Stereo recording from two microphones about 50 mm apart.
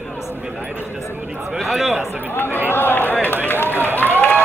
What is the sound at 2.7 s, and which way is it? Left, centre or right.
Speech, left.